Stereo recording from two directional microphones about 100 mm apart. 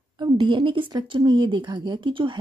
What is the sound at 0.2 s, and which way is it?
A woman's voice, 55° right (ahead or behind).